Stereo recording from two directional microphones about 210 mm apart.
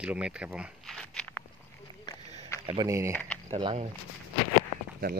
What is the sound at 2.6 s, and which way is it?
Speech, 25° right (ahead or behind).